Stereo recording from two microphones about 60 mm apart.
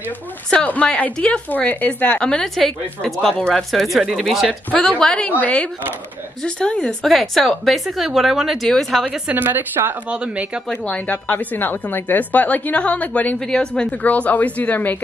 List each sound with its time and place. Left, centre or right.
0.7 s a woman's voice: left
1.5 s a woman's voice: left
2.4 s a woman's voice: centre
3.8 s a woman's voice: centre
4.6 s a woman's voice: left
7.1 s a woman's voice: centre
8.6 s speech: centre
9.3 s speech: right
10.0 s speech: right
10.9 s a woman's voice: left
13.4 s a woman's voice: centre; by 15.0 s left